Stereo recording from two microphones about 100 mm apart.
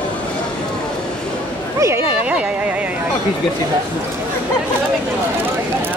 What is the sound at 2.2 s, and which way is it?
Speech, 10° right (ahead or behind).